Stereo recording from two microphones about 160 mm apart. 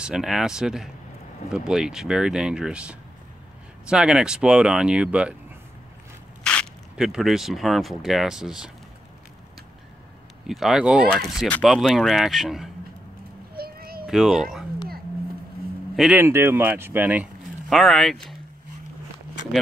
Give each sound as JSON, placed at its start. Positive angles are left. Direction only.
{"t": 0.0, "sound": "speech", "side_deg": -5}
{"t": 6.4, "sound": "a sound", "side_deg": 5}
{"t": 7.1, "sound": "speech", "side_deg": 0}
{"t": 10.4, "sound": "speech", "side_deg": 0}
{"t": 13.6, "sound": "a sound", "side_deg": -70}
{"t": 14.0, "sound": "speech", "side_deg": 0}
{"t": 16.0, "sound": "speech", "side_deg": -10}
{"t": 17.6, "sound": "speech", "side_deg": 0}